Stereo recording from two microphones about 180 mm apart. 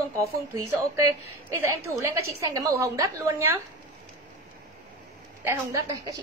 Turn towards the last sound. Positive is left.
turn(degrees=-15)  # may be behind; listen again after turning